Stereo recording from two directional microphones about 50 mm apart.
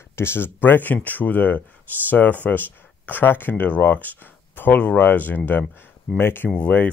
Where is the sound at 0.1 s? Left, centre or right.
Left.